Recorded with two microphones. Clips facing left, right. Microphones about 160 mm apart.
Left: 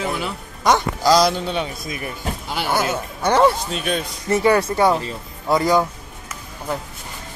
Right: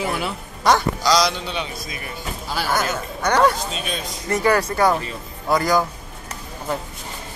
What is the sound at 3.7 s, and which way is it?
Speech, 60° left (ahead or behind).